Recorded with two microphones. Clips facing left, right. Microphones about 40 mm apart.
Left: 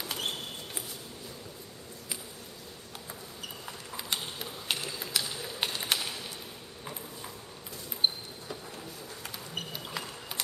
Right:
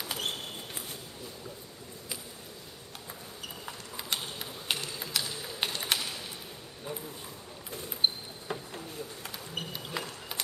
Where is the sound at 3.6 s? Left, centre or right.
Centre.